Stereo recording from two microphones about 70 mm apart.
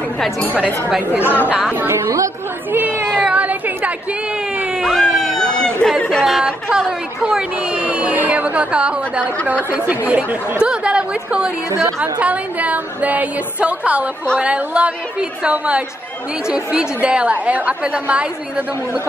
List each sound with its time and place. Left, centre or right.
1.2 s a woman's voice: left
1.9 s a woman's voice: right
2.7 s speech: right
3.3 s a sound: right
4.8 s a sound: centre
5.9 s speech: centre
6.2 s a woman's voice: centre